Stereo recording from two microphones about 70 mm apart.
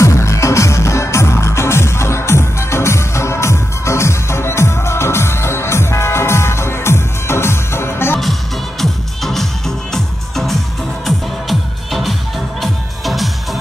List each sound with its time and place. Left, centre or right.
0.0 s music: left
8.2 s music: centre